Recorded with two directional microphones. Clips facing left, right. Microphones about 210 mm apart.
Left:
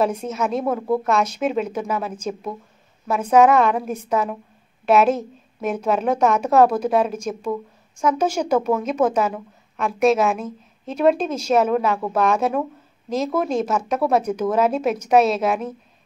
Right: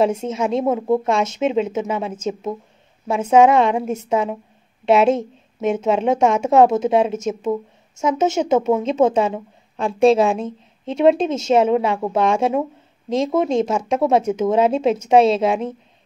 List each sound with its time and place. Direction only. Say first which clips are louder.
0.0 s a woman's voice: right 3 dB; 25° right (ahead or behind)